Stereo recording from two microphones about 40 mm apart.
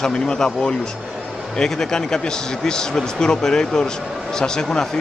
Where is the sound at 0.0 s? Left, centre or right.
Centre.